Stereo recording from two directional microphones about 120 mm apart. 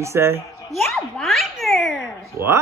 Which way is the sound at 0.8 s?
Centre (ahead or behind).